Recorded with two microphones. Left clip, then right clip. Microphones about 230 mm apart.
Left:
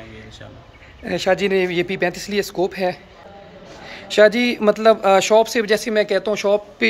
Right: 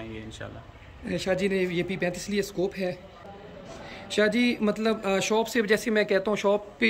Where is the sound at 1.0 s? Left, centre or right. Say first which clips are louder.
Left 9 dB; centre.